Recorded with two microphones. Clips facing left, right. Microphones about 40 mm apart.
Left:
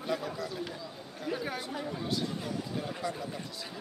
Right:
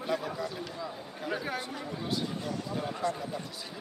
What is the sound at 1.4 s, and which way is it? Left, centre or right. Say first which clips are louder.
Speech: even; centre.